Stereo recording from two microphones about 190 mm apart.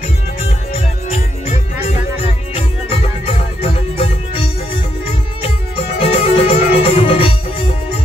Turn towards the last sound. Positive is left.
turn(degrees=30)  # may be behind; listen again after turning